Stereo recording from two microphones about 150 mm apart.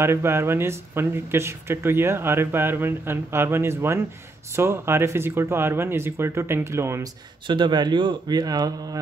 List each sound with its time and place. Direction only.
0.0 s speech: 15° right (ahead or behind)
7.4 s speech: 30° right (ahead or behind)